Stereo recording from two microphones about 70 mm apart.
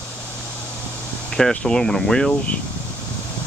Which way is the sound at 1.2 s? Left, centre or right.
Centre.